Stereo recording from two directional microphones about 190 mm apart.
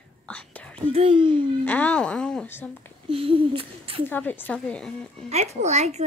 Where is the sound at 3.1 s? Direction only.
30° right (ahead or behind).